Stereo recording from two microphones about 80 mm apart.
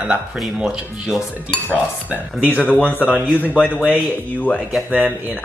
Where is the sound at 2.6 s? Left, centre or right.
Centre.